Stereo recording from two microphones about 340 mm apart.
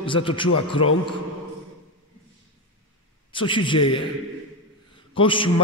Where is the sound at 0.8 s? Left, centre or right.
Left.